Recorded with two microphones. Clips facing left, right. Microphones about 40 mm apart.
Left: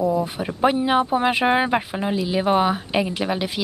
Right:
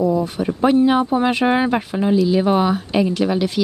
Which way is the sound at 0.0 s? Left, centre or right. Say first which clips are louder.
Right 3 dB; centre.